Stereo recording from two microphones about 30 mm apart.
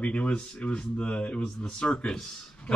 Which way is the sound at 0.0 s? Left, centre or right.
Left.